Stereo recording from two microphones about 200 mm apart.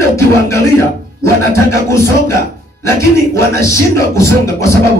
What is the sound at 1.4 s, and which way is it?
Speech, 15° left (ahead or behind).